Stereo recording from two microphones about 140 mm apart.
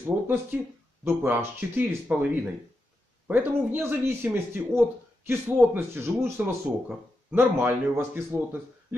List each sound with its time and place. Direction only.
0.0 s speech: 15° right (ahead or behind)
3.3 s speech: 15° right (ahead or behind)